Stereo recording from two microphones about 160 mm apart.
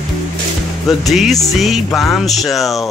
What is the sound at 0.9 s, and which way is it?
Speech, centre (ahead or behind).